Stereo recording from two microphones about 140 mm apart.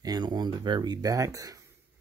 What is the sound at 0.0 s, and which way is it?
Speech, 30° right (ahead or behind).